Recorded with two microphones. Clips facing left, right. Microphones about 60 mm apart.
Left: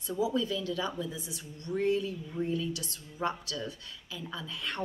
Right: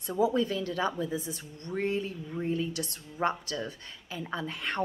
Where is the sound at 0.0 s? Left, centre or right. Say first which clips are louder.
Right 4 dB; right.